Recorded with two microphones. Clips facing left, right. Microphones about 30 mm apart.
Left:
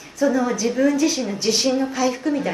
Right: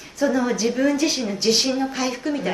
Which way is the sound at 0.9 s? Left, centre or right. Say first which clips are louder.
Left 2 dB; right.